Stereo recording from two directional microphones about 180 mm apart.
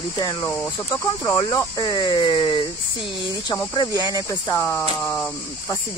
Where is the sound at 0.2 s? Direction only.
25° left (ahead or behind).